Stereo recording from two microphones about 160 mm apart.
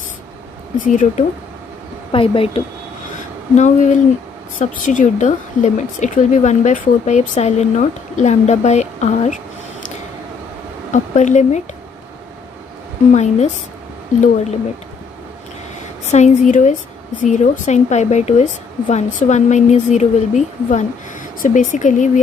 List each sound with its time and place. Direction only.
0.8 s a woman's voice: 50° left (ahead or behind)
2.1 s a woman's voice: 35° left (ahead or behind)
3.5 s a woman's voice: 50° left (ahead or behind)
10.9 s a woman's voice: 50° left (ahead or behind)
13.1 s a woman's voice: 45° left (ahead or behind)
16.1 s a woman's voice: 50° left (ahead or behind)